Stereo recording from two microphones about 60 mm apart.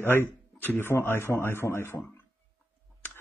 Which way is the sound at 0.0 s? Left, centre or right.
Left.